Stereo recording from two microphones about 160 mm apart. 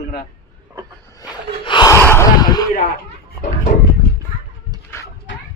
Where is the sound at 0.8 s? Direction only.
20° right (ahead or behind).